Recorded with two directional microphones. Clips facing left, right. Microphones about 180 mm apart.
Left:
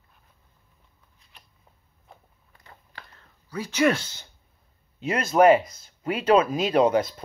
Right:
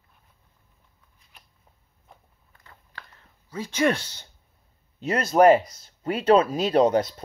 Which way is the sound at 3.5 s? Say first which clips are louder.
Left 1 dB; 25° right (ahead or behind).